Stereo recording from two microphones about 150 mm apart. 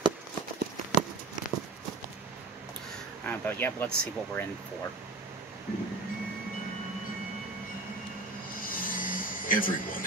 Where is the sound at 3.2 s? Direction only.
10° left (ahead or behind).